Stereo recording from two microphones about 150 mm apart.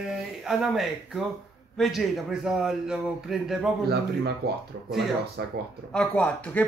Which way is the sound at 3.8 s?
90° right.